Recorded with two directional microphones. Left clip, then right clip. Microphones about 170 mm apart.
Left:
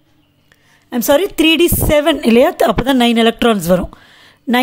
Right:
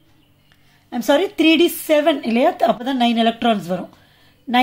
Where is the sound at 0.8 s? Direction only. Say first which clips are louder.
Left 4 dB; 55° left (ahead or behind).